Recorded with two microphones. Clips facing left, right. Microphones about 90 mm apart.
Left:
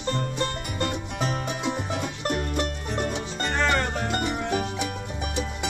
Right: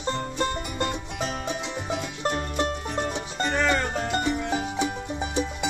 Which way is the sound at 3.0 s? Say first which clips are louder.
Left 1 dB; 5° right (ahead or behind).